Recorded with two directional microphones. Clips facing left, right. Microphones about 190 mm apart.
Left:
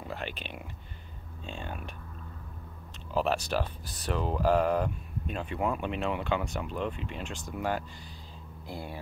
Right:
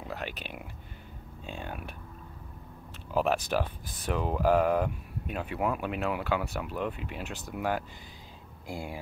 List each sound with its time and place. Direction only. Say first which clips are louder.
0.0 s a sound: even; 5° right (ahead or behind)
1.4 s speech: even; 10° right (ahead or behind)
3.1 s speech: right 1 dB; 10° right (ahead or behind)